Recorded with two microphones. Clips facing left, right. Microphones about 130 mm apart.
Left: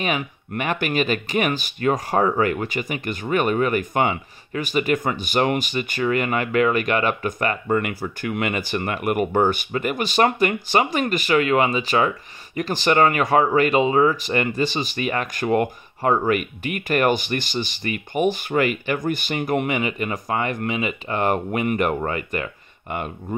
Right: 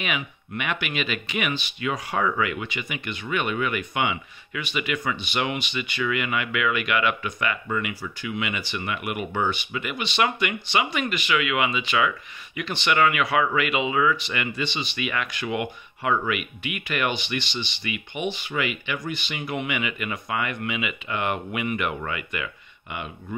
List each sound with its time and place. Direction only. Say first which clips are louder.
0.5 s speech: left 6 dB; 40° left (ahead or behind)